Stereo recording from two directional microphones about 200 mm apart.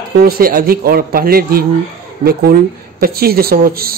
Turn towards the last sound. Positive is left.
turn(degrees=-45)  # may be behind; listen again after turning